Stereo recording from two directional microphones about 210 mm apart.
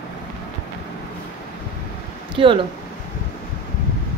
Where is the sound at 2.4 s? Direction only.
25° right (ahead or behind).